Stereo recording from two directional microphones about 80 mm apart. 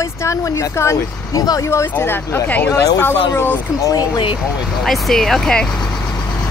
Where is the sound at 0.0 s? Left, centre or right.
Left.